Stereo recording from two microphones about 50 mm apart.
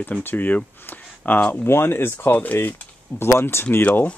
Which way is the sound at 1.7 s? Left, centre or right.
Left.